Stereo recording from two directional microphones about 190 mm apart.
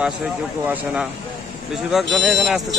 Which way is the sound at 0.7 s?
10° right (ahead or behind).